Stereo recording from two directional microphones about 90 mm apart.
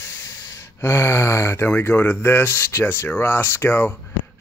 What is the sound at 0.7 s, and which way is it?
Speech, 30° left (ahead or behind).